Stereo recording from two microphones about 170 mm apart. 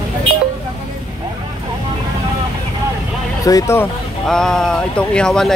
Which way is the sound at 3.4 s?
20° left (ahead or behind).